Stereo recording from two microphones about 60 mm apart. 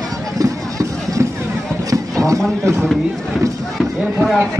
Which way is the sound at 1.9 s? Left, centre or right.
Right.